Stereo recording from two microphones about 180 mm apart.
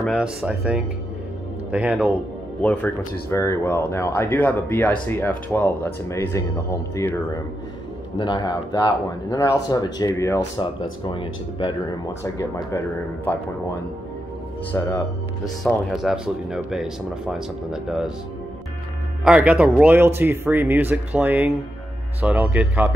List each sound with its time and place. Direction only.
0.0 s speech: 5° right (ahead or behind)
2.6 s speech: 10° left (ahead or behind)
8.2 s speech: 25° left (ahead or behind)
10.6 s speech: 30° left (ahead or behind); by 13.4 s 10° left (ahead or behind)
14.7 s speech: 15° left (ahead or behind)
15.4 s speech: centre (ahead or behind)
19.2 s speech: 5° right (ahead or behind)